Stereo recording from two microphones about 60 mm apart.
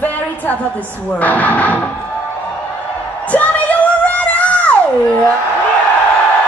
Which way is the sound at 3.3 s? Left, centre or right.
Left.